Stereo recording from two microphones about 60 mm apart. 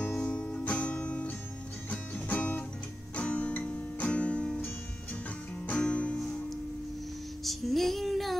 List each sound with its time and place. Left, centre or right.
0.2 s music: centre
5.7 s music: left
7.4 s female singing: centre